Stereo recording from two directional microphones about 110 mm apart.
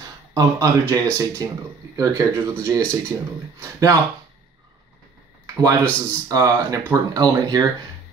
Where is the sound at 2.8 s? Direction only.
10° left (ahead or behind).